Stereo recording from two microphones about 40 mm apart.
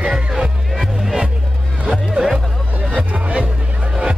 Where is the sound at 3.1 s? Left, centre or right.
Right.